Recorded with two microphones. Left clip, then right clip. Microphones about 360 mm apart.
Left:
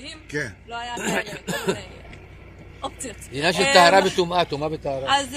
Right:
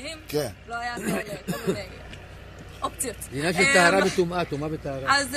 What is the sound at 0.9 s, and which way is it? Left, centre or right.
Speech, left.